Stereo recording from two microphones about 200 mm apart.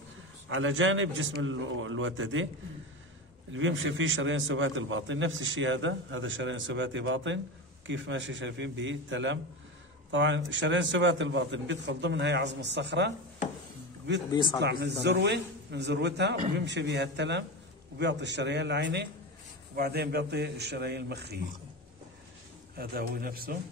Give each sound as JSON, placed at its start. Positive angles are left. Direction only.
{"t": 0.5, "sound": "a man's voice", "side_deg": -75}
{"t": 3.5, "sound": "a man's voice", "side_deg": -75}
{"t": 14.3, "sound": "a man's voice", "side_deg": 25}
{"t": 14.6, "sound": "a man's voice", "side_deg": -55}
{"t": 22.8, "sound": "a man's voice", "side_deg": -50}